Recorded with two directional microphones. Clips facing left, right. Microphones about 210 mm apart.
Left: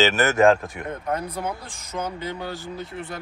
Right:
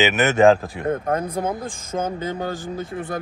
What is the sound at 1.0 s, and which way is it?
Speech, 45° right (ahead or behind).